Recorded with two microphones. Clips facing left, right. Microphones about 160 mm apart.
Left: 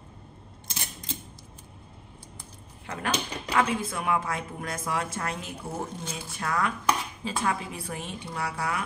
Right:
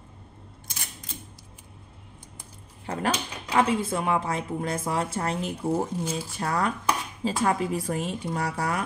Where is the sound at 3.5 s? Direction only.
30° right (ahead or behind).